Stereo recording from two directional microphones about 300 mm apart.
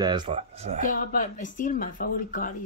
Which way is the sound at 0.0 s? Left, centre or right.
Centre.